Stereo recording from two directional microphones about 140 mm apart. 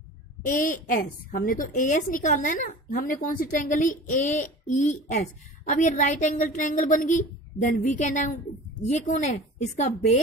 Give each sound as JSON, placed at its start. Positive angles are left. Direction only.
{"t": 0.5, "sound": "a woman's voice", "side_deg": 75}